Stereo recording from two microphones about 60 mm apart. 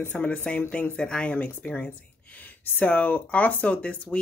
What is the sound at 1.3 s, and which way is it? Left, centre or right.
Speech, left.